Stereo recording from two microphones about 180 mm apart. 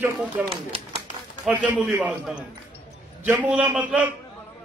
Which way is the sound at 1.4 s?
10° right (ahead or behind).